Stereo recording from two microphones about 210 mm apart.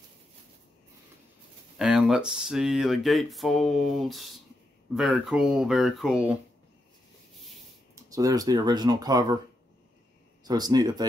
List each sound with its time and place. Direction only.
1.8 s speech: 5° right (ahead or behind)
7.9 s speech: 15° right (ahead or behind)
10.4 s speech: 20° right (ahead or behind)